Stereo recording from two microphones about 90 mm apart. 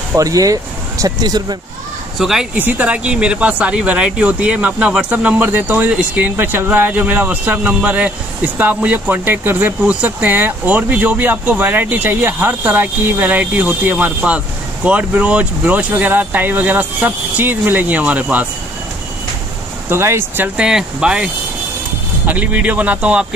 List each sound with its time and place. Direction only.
0.1 s speech: 40° right (ahead or behind)
2.1 s speech: 5° right (ahead or behind)
2.5 s speech: 15° right (ahead or behind)
19.9 s speech: 30° right (ahead or behind)
20.4 s speech: 10° right (ahead or behind)